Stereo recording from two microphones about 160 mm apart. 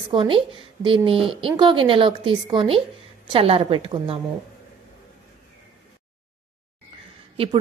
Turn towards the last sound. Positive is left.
turn(degrees=-35)  # may be behind; listen again after turning